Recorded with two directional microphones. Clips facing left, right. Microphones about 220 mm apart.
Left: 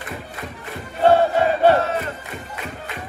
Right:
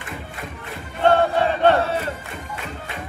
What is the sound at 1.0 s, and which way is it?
Music, 10° left (ahead or behind).